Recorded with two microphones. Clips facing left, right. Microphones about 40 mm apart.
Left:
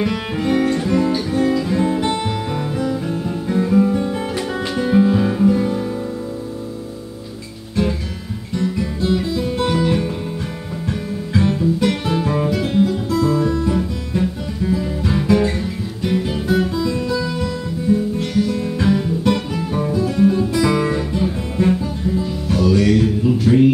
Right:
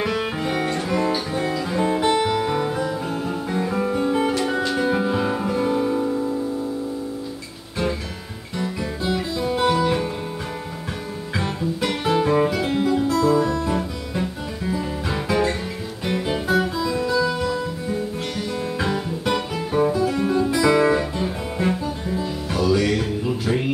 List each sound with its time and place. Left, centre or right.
0.0 s music: centre
8.5 s guitar: centre
11.3 s guitar: centre